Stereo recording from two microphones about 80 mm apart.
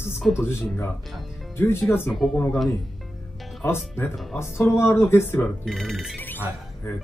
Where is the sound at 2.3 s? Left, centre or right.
Centre.